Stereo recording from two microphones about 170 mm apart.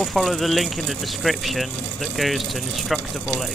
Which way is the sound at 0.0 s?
Centre (ahead or behind).